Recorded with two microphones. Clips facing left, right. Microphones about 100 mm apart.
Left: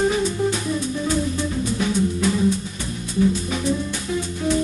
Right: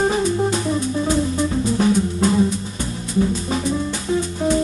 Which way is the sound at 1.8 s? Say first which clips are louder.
Right 4 dB; 35° right (ahead or behind).